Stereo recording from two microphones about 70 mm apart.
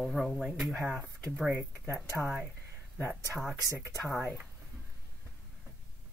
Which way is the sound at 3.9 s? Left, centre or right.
Left.